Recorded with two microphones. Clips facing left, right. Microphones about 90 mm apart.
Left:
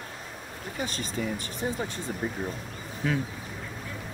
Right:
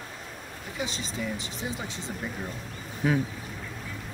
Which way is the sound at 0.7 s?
50° left (ahead or behind).